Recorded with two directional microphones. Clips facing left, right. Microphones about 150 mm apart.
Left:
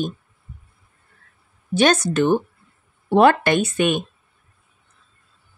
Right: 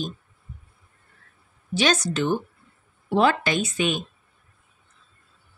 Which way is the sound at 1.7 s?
55° left (ahead or behind).